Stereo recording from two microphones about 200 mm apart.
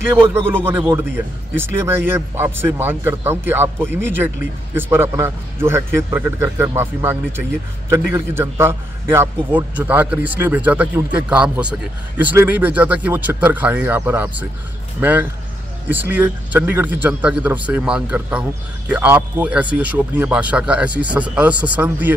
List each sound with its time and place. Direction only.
0.1 s a man's voice: 10° right (ahead or behind)